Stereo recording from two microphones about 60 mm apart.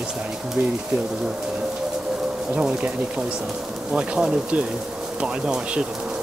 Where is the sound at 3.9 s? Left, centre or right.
Centre.